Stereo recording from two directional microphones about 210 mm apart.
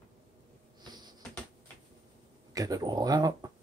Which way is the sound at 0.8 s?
20° right (ahead or behind).